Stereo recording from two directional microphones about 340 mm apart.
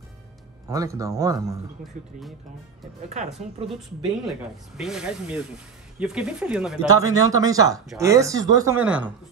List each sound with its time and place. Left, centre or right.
0.7 s speech: centre
3.1 s speech: centre
4.3 s speech: centre